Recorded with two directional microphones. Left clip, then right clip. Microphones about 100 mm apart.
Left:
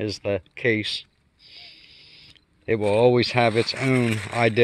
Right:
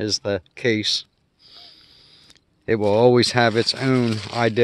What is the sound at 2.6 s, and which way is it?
Speech, 55° right (ahead or behind).